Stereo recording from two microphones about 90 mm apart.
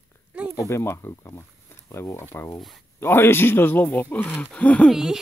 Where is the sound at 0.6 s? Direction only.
30° left (ahead or behind).